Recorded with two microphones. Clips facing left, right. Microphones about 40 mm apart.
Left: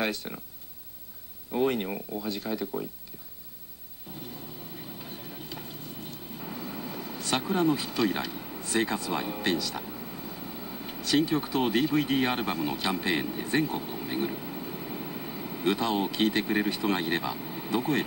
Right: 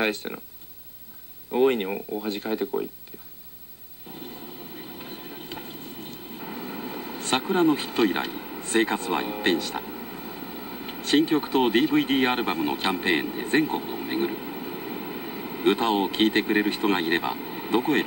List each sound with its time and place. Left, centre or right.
0.0 s speech: right
1.5 s speech: right
4.1 s a sound: right
4.7 s vehicle: right
8.6 s speech: right
9.8 s vehicle: right
11.0 s speech: right